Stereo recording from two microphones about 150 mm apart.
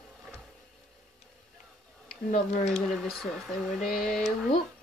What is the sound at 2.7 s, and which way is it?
Speech, centre (ahead or behind).